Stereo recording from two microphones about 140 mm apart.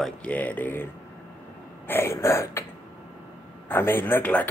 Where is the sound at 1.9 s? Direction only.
15° left (ahead or behind).